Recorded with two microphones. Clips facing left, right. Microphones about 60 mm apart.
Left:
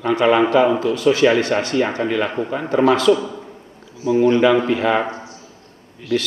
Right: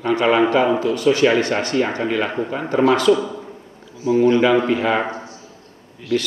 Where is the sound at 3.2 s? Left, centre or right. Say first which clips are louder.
Right 2 dB; centre.